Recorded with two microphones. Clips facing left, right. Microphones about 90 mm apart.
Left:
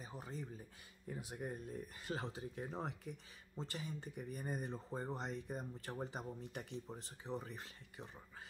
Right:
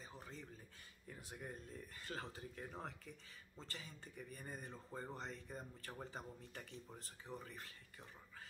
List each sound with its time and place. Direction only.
0.0 s speech: 15° left (ahead or behind)